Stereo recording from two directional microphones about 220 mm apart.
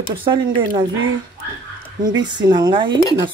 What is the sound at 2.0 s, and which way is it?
Speech, 20° right (ahead or behind).